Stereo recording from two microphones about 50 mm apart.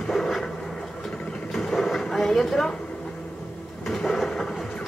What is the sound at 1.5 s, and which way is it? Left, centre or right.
Speech, centre.